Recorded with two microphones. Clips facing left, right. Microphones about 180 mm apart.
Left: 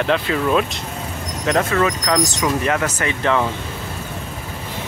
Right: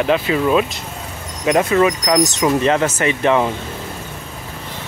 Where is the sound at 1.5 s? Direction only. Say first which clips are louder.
Right 4 dB; 15° right (ahead or behind).